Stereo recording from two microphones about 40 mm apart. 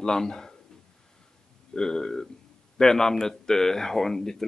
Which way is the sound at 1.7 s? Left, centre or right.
Centre.